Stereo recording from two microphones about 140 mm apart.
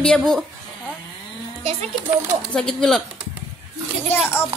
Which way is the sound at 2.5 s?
5° left (ahead or behind).